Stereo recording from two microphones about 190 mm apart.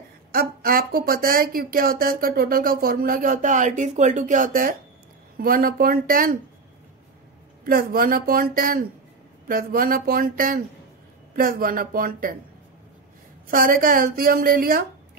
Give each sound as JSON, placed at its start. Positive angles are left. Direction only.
{"t": 0.3, "sound": "speech", "side_deg": -50}
{"t": 7.6, "sound": "speech", "side_deg": -50}
{"t": 13.5, "sound": "speech", "side_deg": -50}